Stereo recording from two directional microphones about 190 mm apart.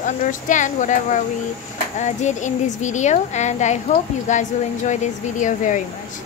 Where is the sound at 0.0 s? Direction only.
40° left (ahead or behind).